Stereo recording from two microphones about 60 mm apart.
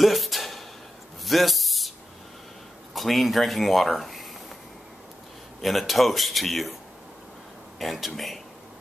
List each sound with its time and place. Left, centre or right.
0.0 s a sound: centre
2.9 s speech: centre
5.6 s speech: centre
7.8 s speech: centre